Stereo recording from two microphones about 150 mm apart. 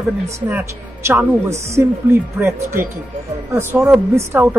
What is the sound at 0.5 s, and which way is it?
A woman's voice, 15° right (ahead or behind).